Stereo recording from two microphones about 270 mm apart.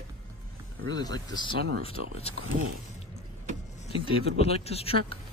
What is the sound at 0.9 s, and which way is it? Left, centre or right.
Speech, centre.